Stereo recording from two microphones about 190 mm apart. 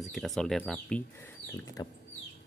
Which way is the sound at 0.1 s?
Centre (ahead or behind).